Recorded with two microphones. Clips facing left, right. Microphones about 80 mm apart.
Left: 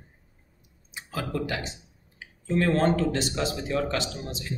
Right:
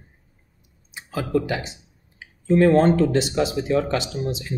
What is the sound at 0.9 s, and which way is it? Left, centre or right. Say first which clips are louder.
A man's voice: right 8 dB; centre.